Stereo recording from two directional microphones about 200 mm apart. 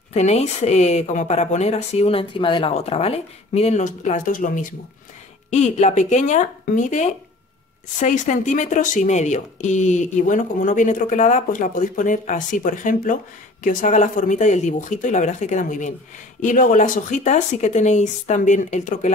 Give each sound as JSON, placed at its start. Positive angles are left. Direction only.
{"t": 0.1, "sound": "speech", "side_deg": 30}